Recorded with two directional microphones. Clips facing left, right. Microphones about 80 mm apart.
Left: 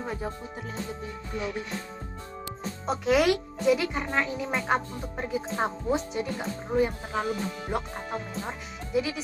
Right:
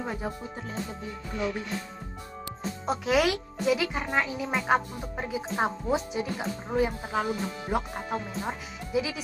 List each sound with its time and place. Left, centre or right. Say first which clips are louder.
2.9 s a child's voice: left 2 dB; centre
8.1 s a child's voice: right 2 dB; centre